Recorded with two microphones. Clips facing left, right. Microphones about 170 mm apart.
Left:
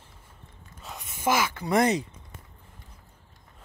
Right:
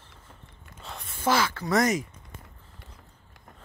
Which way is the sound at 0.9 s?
15° left (ahead or behind).